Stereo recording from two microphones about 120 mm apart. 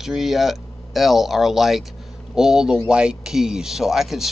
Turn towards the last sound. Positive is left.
turn(degrees=-5)  # may be behind; listen again after turning